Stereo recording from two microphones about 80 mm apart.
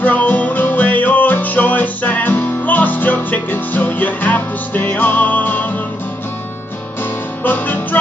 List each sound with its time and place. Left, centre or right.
0.0 s music: left
7.0 s music: left